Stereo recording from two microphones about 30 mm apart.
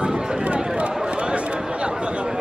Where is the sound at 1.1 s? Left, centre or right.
Right.